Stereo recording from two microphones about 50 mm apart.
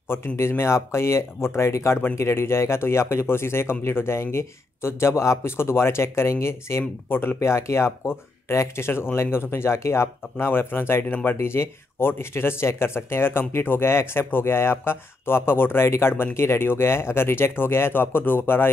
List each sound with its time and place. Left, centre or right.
0.1 s speech: left
7.1 s speech: left
7.3 s speech: left
10.4 s speech: left